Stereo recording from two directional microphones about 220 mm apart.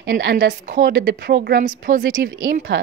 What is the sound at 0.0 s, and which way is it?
Speech, 50° right (ahead or behind).